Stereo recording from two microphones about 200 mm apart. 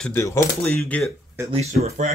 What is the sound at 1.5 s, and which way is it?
Speech, 30° right (ahead or behind).